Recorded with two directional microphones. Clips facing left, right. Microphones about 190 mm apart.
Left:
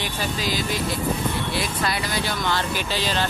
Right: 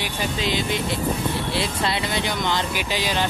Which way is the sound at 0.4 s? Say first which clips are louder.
Right 2 dB; 25° right (ahead or behind).